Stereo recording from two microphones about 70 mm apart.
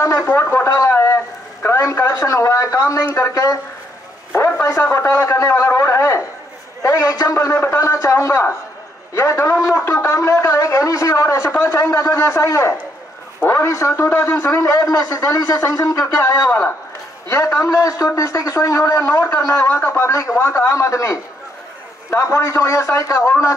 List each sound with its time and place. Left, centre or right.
0.0 s a sound: left
1.8 s a man's voice: left
4.6 s a man's voice: left
6.8 s a man's voice: left
7.5 s a man's voice: left
7.9 s a man's voice: left